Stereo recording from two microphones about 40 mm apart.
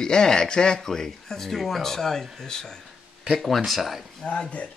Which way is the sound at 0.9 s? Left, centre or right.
Centre.